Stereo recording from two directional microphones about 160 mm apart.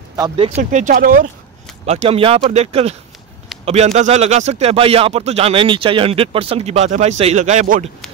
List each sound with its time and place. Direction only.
0.6 s speech: 50° right (ahead or behind)
0.9 s speech: 60° right (ahead or behind)
1.9 s speech: 40° right (ahead or behind)